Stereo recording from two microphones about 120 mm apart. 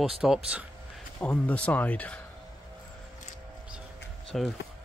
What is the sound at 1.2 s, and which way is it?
Speech, 10° left (ahead or behind).